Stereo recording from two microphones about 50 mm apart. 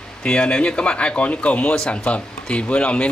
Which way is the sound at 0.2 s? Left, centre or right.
Left.